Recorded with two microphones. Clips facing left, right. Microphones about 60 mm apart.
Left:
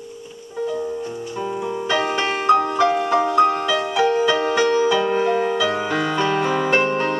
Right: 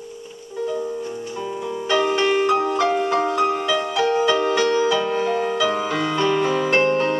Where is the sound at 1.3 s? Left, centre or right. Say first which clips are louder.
Left 4 dB; centre.